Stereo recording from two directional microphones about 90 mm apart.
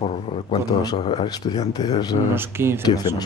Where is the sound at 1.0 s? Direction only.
90° left.